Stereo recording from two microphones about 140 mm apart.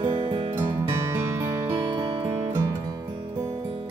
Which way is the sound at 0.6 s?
20° right (ahead or behind).